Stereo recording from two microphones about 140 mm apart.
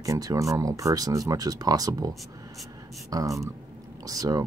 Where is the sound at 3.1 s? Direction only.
25° right (ahead or behind).